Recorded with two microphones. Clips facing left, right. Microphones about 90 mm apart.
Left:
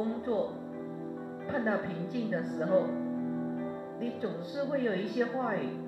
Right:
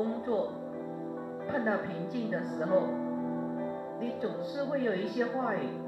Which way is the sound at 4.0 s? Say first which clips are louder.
Right 1 dB; centre (ahead or behind).